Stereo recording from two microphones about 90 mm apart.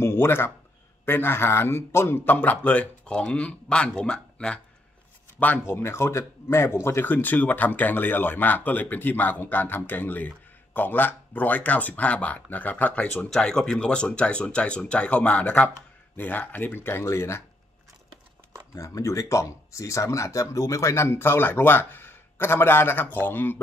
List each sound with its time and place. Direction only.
0.0 s a sound: 30° left (ahead or behind)
1.0 s a man's voice: 25° left (ahead or behind)
5.4 s speech: 25° left (ahead or behind)
18.8 s speech: 35° left (ahead or behind)